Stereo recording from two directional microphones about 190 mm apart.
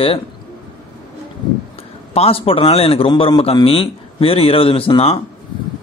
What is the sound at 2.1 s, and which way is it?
A man's voice, 30° left (ahead or behind).